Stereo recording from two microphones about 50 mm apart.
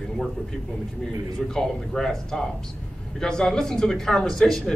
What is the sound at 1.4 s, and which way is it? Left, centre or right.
A man's voice, centre.